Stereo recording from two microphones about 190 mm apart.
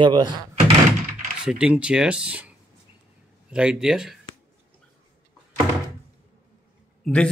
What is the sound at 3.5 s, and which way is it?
Speech, 5° right (ahead or behind).